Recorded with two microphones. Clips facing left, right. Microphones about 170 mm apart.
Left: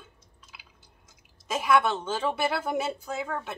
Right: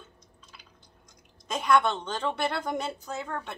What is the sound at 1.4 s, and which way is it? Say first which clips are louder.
A woman's voice: even; 5° left (ahead or behind).